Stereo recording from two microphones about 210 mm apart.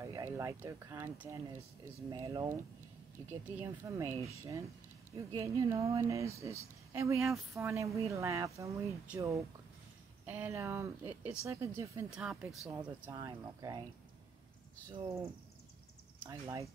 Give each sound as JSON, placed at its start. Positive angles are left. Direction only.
{"t": 0.0, "sound": "speech", "side_deg": -15}
{"t": 12.1, "sound": "speech", "side_deg": 0}
{"t": 15.0, "sound": "speech", "side_deg": -20}
{"t": 16.3, "sound": "speech", "side_deg": -15}